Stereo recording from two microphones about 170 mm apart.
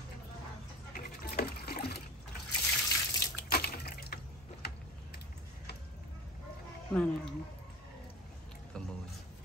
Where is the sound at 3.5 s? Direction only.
65° left (ahead or behind).